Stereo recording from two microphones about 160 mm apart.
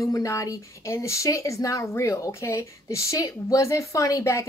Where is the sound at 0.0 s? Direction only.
20° left (ahead or behind).